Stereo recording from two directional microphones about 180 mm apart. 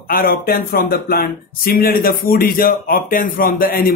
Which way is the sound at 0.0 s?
55° left (ahead or behind).